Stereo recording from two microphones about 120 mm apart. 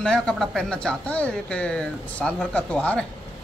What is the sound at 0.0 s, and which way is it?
Speech, 5° left (ahead or behind).